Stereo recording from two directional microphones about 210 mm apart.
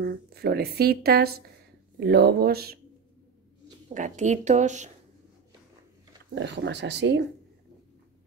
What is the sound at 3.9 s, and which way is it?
Speech, 35° right (ahead or behind).